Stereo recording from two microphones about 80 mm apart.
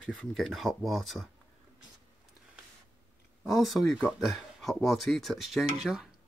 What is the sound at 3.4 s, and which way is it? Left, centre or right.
Speech, centre.